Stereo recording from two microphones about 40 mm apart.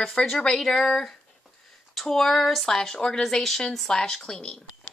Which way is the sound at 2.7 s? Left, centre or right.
Centre.